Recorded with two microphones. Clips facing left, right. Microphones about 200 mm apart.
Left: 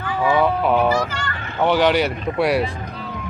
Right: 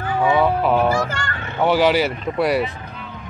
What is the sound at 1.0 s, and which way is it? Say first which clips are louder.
Honk: even; 50° right (ahead or behind).